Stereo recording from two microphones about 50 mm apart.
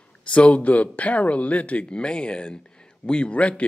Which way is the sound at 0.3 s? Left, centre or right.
Left.